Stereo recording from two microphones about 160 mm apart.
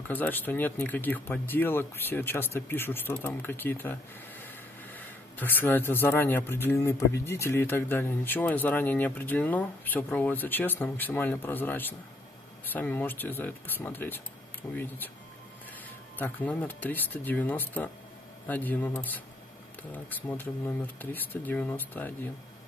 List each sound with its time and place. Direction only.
0.1 s speech: 10° left (ahead or behind)
16.2 s speech: 10° left (ahead or behind)